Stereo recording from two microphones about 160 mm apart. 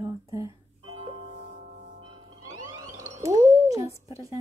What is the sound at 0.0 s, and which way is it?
Music, 20° right (ahead or behind).